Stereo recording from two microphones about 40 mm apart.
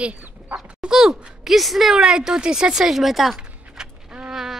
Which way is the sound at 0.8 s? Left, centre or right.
Centre.